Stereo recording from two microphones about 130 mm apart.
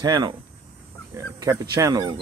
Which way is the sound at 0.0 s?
30° right (ahead or behind).